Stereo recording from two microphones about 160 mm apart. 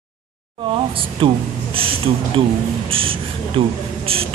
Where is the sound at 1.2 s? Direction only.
30° right (ahead or behind).